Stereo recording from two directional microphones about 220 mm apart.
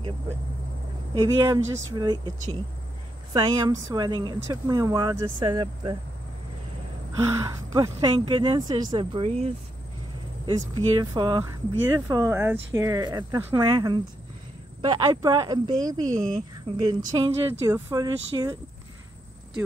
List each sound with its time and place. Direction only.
1.1 s speech: 15° right (ahead or behind)
3.3 s speech: 15° right (ahead or behind)
7.2 s speech: 15° right (ahead or behind)